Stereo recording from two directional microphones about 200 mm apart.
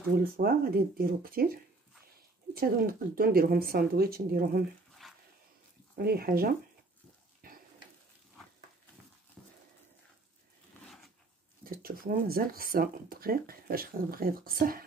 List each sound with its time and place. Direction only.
0.2 s speech: 45° right (ahead or behind)
5.0 s dog: centre (ahead or behind)
5.9 s speech: 50° right (ahead or behind)
7.4 s a sound: 45° right (ahead or behind)
9.4 s horse: 5° left (ahead or behind)
11.7 s speech: 45° right (ahead or behind)